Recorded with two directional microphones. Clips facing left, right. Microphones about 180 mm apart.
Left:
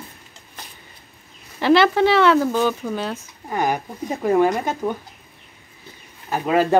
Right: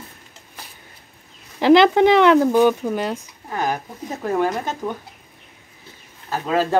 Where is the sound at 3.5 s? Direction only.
15° left (ahead or behind).